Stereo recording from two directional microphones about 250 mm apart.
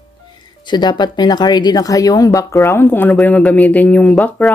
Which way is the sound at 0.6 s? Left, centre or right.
Centre.